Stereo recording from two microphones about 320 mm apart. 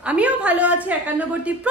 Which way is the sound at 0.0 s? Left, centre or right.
Centre.